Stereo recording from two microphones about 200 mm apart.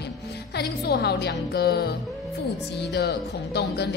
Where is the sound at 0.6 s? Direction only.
55° left (ahead or behind).